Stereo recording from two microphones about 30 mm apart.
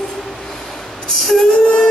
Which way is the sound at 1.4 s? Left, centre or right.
Left.